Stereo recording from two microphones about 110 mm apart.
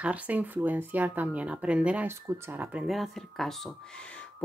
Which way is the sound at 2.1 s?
20° right (ahead or behind).